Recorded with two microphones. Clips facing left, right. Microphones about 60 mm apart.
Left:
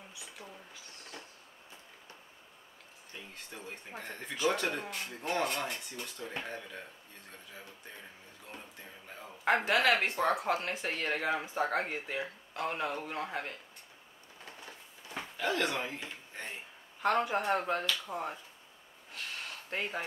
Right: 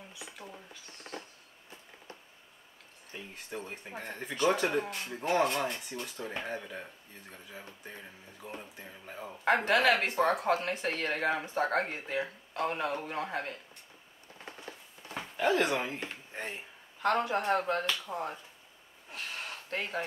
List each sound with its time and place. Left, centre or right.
3.1 s a sound: centre
3.5 s speech: centre
8.5 s speech: right
9.4 s speech: centre
15.3 s speech: centre
17.0 s speech: centre
18.1 s speech: centre
19.7 s speech: centre